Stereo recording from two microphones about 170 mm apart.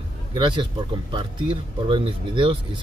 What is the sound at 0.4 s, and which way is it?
Speech, 30° right (ahead or behind).